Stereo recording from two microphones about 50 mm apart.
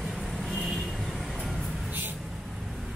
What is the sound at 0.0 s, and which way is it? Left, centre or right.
Vehicle, centre.